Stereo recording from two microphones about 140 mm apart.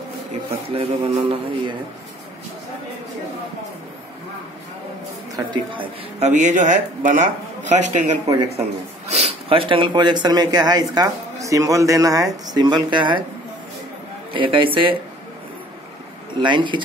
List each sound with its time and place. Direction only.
0.5 s speech: 45° right (ahead or behind)
1.2 s speech: 35° right (ahead or behind)
5.3 s speech: 35° right (ahead or behind)
6.1 s a man's voice: 55° right (ahead or behind); by 13.2 s 35° right (ahead or behind)
14.3 s speech: 40° right (ahead or behind)
16.3 s speech: 35° right (ahead or behind)